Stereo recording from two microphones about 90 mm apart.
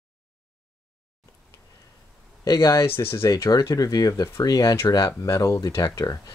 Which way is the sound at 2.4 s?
40° left (ahead or behind).